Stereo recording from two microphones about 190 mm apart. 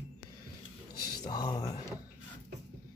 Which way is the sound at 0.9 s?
20° left (ahead or behind).